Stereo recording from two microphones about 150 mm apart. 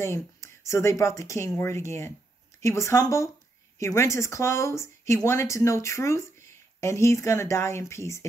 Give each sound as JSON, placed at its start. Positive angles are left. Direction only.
{"t": 0.0, "sound": "speech", "side_deg": 20}